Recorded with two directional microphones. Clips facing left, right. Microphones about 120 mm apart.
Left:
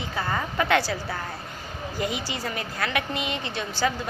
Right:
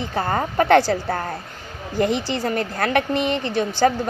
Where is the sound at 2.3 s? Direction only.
50° right (ahead or behind).